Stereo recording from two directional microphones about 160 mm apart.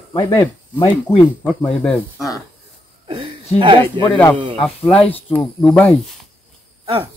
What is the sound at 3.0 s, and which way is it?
Speech, 35° right (ahead or behind).